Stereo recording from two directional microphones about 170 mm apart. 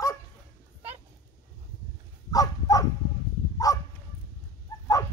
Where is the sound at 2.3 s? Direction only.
20° left (ahead or behind).